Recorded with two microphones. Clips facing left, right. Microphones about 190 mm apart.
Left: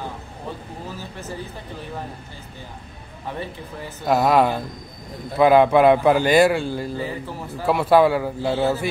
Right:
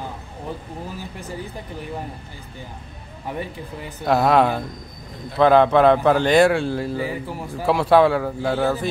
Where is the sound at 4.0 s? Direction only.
Centre (ahead or behind).